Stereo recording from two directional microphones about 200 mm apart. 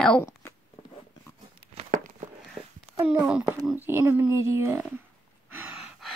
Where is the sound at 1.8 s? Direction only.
40° right (ahead or behind).